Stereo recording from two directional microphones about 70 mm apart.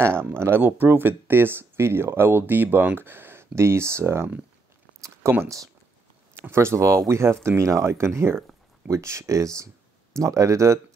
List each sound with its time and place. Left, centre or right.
0.0 s speech: right
6.5 s speech: right